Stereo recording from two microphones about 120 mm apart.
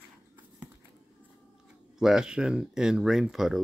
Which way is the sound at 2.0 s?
5° right (ahead or behind).